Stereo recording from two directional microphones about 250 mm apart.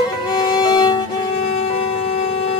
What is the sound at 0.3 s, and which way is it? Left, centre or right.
Violin, centre.